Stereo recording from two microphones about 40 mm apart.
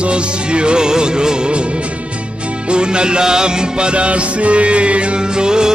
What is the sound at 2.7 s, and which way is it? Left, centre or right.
Music, right.